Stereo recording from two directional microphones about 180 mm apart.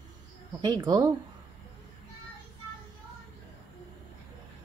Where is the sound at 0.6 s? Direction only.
25° right (ahead or behind).